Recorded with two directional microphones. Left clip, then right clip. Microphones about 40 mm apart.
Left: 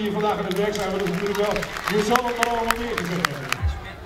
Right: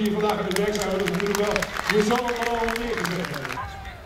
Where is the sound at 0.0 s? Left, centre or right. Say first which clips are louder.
Even; centre.